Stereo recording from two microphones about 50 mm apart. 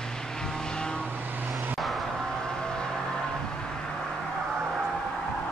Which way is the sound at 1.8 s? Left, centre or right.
Centre.